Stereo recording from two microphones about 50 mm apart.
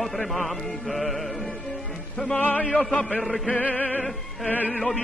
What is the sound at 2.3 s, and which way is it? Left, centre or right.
Music, left.